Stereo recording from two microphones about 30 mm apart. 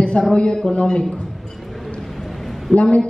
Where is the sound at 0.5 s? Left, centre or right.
Left.